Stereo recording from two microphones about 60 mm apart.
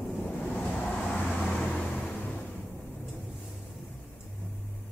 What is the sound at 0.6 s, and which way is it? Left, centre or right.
Vehicle, left.